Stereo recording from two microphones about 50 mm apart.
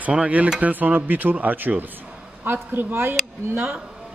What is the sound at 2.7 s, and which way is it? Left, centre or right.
Speech, right.